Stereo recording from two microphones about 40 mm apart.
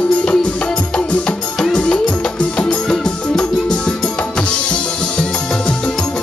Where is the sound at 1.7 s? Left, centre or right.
Left.